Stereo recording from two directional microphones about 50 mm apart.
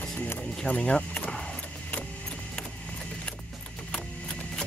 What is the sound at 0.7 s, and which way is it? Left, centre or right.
Speech, left.